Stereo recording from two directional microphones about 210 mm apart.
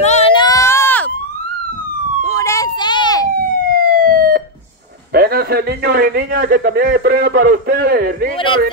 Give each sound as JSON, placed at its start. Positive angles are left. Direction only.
{"t": 0.0, "sound": "a sound", "side_deg": 30}
{"t": 2.2, "sound": "emergency vehicle", "side_deg": 15}
{"t": 3.3, "sound": "police car", "side_deg": -45}
{"t": 5.1, "sound": "a man's voice", "side_deg": -45}
{"t": 8.4, "sound": "speech", "side_deg": 25}